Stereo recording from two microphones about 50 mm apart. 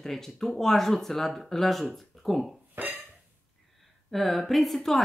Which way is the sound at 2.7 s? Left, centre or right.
Right.